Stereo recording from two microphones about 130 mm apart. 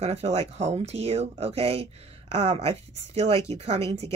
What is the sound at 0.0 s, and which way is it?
Speech, 55° right (ahead or behind).